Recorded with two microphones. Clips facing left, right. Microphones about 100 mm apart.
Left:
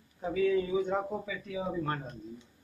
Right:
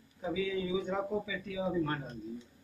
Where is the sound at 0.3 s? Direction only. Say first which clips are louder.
Left 5 dB; 55° left (ahead or behind).